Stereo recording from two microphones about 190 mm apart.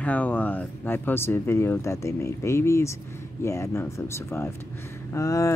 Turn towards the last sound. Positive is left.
turn(degrees=15)  # may be behind; listen again after turning